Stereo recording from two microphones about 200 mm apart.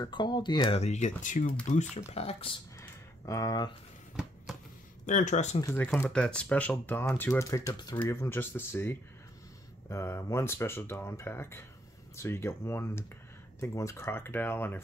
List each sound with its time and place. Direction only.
0.0 s speech: 25° left (ahead or behind)
2.8 s a sound: 15° left (ahead or behind)
5.0 s speech: 40° left (ahead or behind)
5.6 s speech: 15° left (ahead or behind)
5.9 s speech: 5° left (ahead or behind)